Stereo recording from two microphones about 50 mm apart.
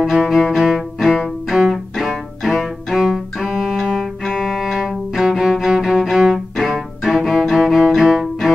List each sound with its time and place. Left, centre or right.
0.0 s music: centre
1.2 s bowed string instrument: centre
4.3 s cello: centre